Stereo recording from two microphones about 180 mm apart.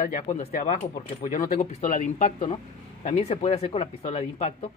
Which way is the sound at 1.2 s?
50° left (ahead or behind).